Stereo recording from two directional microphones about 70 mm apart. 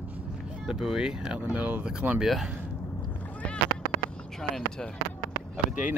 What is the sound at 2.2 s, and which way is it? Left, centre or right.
Speech, centre.